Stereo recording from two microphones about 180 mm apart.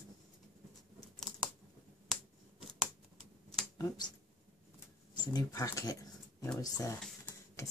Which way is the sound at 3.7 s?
20° left (ahead or behind).